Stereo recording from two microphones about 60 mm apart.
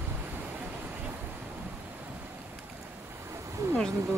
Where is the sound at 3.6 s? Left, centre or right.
Right.